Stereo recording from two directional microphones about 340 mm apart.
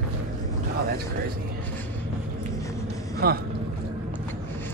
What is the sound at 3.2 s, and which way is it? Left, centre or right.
Speech, right.